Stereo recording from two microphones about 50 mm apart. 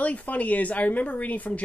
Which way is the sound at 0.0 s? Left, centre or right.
Left.